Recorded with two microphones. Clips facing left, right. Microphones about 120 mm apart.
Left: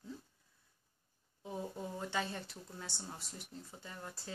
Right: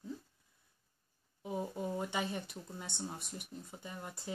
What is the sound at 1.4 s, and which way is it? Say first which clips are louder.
Speech: right 4 dB; 15° right (ahead or behind).